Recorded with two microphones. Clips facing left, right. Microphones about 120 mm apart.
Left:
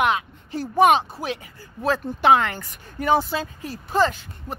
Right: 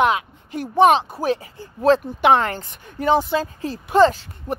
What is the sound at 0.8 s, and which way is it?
Speech, 30° right (ahead or behind).